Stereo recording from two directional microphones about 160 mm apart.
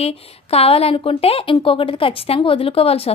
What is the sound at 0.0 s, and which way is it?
A woman's voice, 40° left (ahead or behind).